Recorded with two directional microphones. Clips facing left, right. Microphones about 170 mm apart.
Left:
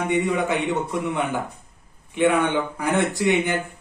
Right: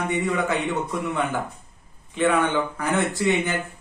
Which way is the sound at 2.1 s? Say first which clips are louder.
Left 1 dB; 20° left (ahead or behind).